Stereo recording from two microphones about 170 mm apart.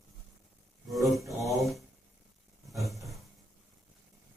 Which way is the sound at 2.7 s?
Centre (ahead or behind).